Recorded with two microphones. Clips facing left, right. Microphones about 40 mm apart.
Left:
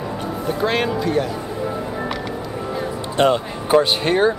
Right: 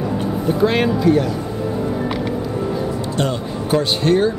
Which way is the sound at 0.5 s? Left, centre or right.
Centre.